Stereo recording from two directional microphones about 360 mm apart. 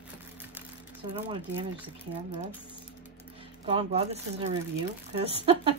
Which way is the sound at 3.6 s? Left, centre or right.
Centre.